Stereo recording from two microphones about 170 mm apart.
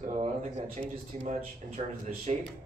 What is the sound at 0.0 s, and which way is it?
A man's voice, 45° right (ahead or behind).